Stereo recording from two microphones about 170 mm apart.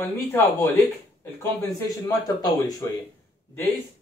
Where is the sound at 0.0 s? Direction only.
15° left (ahead or behind).